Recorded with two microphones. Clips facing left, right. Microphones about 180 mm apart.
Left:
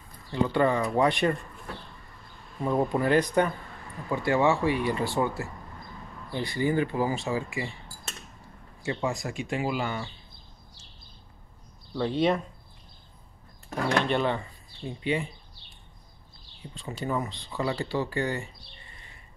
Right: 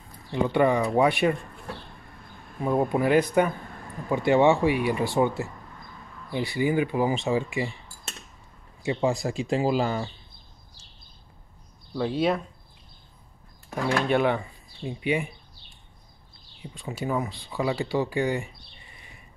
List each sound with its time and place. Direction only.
0.3 s speech: 15° right (ahead or behind)
2.6 s speech: 10° right (ahead or behind)
4.1 s speech: 20° right (ahead or behind)
4.6 s speech: 15° right (ahead or behind)
6.3 s speech: 10° right (ahead or behind)
9.0 s speech: 30° right (ahead or behind)
11.9 s speech: 5° right (ahead or behind)
13.7 s speech: 10° right (ahead or behind)
16.6 s speech: 10° right (ahead or behind)
18.9 s bird: 15° right (ahead or behind)